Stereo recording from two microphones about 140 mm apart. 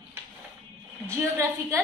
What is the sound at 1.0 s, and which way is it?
Speech, 20° right (ahead or behind).